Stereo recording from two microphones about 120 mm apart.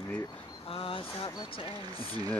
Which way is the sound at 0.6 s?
50° left (ahead or behind).